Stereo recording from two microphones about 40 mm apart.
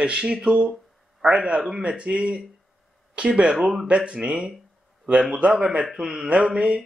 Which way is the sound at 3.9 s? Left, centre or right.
Right.